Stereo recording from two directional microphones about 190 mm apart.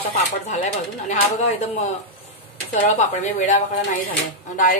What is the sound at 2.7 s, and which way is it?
A woman's voice, 40° left (ahead or behind).